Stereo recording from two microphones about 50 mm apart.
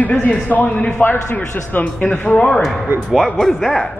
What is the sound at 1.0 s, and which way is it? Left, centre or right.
A man's voice, left.